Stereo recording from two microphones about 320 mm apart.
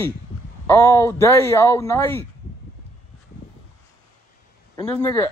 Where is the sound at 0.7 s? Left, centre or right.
Centre.